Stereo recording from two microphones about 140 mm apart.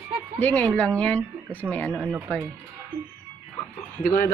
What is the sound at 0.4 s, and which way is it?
Speech, 10° left (ahead or behind).